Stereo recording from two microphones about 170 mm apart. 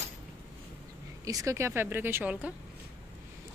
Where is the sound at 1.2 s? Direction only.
20° right (ahead or behind).